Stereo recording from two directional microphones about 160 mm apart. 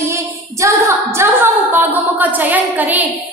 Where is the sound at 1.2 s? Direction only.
15° right (ahead or behind).